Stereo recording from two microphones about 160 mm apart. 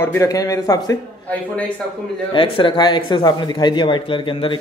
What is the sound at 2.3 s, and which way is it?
Speech, 35° left (ahead or behind).